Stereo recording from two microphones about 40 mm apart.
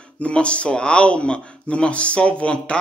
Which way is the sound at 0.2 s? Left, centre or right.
Left.